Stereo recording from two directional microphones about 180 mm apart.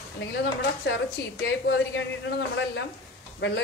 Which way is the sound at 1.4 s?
75° left (ahead or behind).